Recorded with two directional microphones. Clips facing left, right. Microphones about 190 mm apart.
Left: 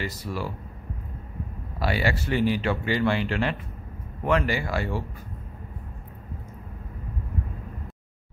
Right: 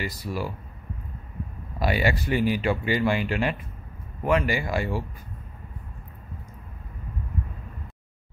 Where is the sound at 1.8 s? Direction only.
15° right (ahead or behind).